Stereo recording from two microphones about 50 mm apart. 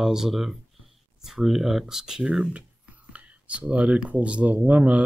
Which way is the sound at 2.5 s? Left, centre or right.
Right.